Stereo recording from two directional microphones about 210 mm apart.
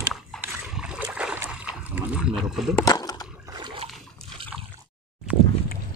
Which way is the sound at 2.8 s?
15° left (ahead or behind).